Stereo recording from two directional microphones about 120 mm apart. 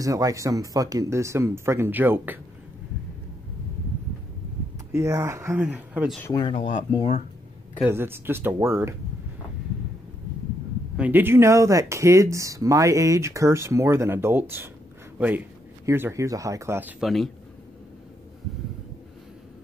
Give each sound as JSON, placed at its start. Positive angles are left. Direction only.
{"t": 0.0, "sound": "speech", "side_deg": -30}
{"t": 4.9, "sound": "speech", "side_deg": -25}
{"t": 5.7, "sound": "speech", "side_deg": -10}
{"t": 6.3, "sound": "speech", "side_deg": 45}
{"t": 7.8, "sound": "speech", "side_deg": -20}
{"t": 11.0, "sound": "a man's voice", "side_deg": -15}
{"t": 17.0, "sound": "a man's voice", "side_deg": 0}